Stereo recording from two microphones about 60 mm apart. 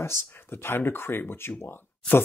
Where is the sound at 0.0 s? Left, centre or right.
Left.